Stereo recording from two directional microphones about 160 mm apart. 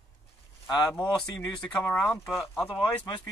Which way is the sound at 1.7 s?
5° left (ahead or behind).